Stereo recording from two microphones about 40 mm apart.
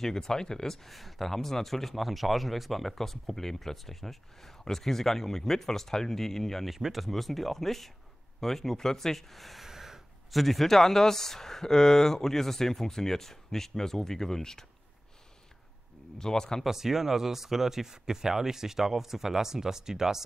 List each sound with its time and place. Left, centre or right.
0.0 s speech: centre
0.8 s speech: centre
6.7 s speech: centre
9.7 s a sound: centre
10.3 s speech: centre
16.2 s speech: centre
16.6 s speech: centre